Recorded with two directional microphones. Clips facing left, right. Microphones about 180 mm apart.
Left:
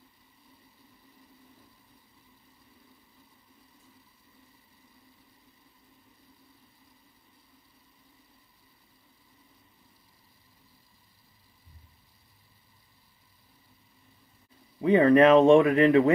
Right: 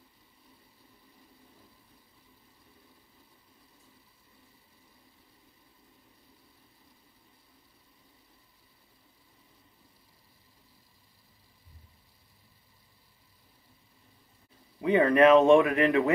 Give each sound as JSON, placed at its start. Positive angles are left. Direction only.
{"t": 14.8, "sound": "speech", "side_deg": 30}